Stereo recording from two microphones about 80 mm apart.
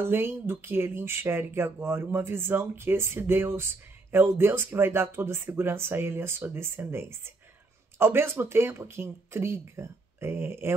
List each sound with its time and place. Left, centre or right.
0.0 s speech: right